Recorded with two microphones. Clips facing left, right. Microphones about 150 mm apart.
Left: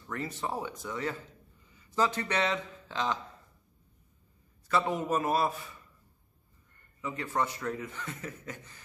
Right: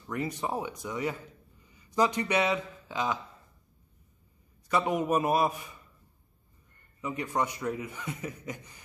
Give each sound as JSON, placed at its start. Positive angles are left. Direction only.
{"t": 0.0, "sound": "speech", "side_deg": -15}
{"t": 4.6, "sound": "speech", "side_deg": -15}
{"t": 7.0, "sound": "speech", "side_deg": -15}